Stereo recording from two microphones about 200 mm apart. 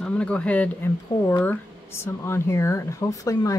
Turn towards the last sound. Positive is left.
turn(degrees=15)  # may be behind; listen again after turning